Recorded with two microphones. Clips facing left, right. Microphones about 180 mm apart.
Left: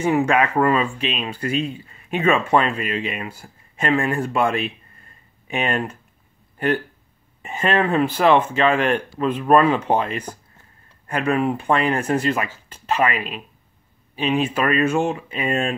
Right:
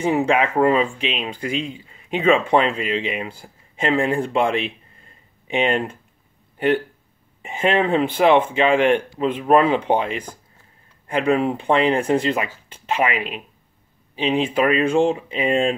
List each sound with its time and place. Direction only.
0.0 s speech: 15° right (ahead or behind)
7.4 s speech: 15° right (ahead or behind)